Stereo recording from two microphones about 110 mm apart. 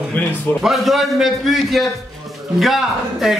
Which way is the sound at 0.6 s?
Centre (ahead or behind).